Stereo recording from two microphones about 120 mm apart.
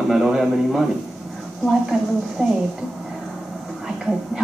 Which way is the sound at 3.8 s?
Centre (ahead or behind).